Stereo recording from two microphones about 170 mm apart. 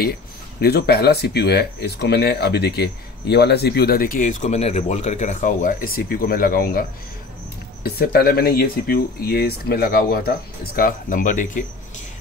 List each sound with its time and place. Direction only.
0.0 s speech: 65° left (ahead or behind); by 11.6 s 50° left (ahead or behind)